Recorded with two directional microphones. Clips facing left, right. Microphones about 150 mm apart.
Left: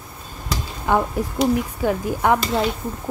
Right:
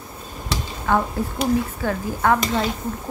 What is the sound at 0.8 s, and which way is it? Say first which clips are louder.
A woman's voice: left 1 dB; 15° left (ahead or behind).